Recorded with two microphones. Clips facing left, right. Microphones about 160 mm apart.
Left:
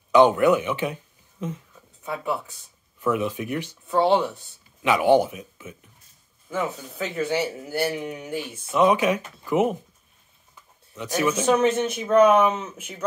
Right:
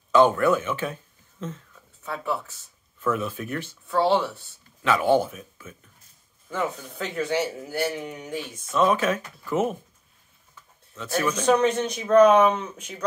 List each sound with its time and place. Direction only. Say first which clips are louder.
0.1 s speech: left 2 dB; 15° left (ahead or behind)
6.5 s speech: left 1 dB; 5° left (ahead or behind)